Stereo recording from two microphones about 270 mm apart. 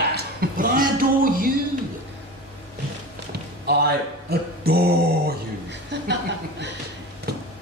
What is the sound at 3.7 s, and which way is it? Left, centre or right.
A man's voice, right.